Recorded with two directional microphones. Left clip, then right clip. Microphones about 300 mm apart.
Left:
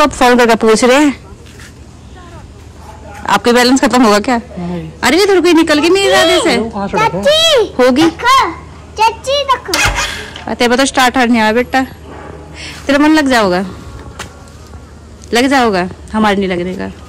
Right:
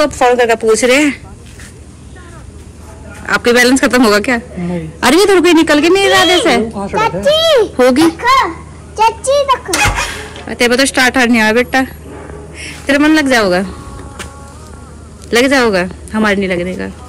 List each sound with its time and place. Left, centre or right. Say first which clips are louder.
0.2 s speech: even; left
0.9 s a woman's voice: left 1 dB; centre
3.4 s a woman's voice: right 2 dB; centre
6.7 s a child's voice: left 1 dB; left
7.3 s speech: right 1 dB; centre
8.9 s speech: right 1 dB; centre
12.5 s a sound: even; centre
15.2 s a woman's voice: even; centre